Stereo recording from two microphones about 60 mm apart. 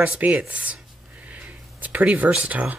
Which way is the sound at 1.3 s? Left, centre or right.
Right.